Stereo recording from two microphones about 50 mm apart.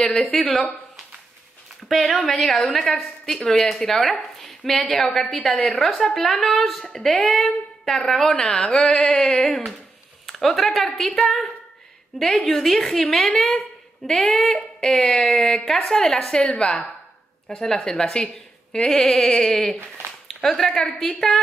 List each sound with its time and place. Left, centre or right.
0.1 s a woman's voice: centre
1.9 s a woman's voice: centre
2.6 s a woman's voice: centre
10.2 s a woman's voice: centre
14.0 s a woman's voice: centre